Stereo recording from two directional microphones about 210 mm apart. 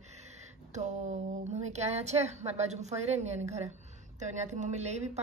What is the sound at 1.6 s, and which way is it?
Speech, 30° right (ahead or behind).